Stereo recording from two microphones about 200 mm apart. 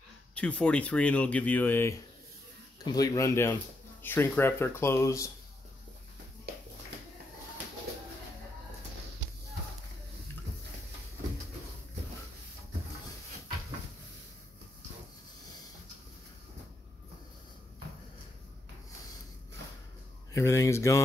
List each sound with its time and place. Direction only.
0.3 s speech: 5° left (ahead or behind)
20.3 s speech: 15° left (ahead or behind)